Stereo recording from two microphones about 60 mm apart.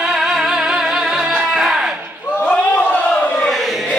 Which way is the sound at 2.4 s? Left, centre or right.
Left.